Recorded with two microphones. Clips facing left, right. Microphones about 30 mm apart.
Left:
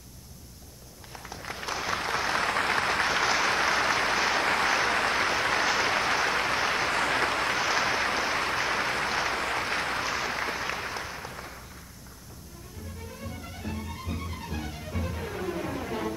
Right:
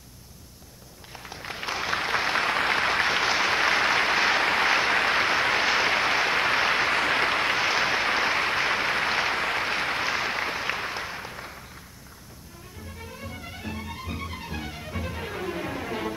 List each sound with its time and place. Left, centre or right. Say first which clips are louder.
1.1 s applause: right 2 dB; right
13.0 s music: right 2 dB; right